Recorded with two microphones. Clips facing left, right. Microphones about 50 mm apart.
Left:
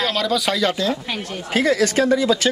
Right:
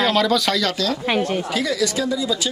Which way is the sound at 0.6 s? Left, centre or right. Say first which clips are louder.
Left 2 dB; left.